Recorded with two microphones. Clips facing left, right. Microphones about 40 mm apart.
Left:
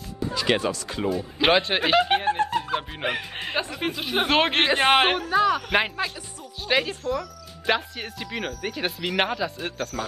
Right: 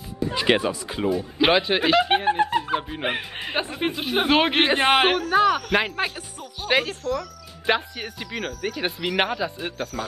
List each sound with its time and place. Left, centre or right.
0.3 s speech: right
0.6 s speech: centre
1.0 s speech: centre
2.2 s music: centre
3.5 s speech: centre
5.3 s a man's voice: right
5.7 s a man's voice: centre
6.6 s speech: centre
7.0 s a man's voice: centre
7.6 s speech: centre